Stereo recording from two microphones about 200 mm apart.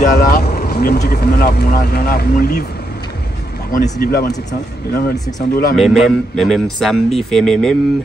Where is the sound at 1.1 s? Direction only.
55° left (ahead or behind).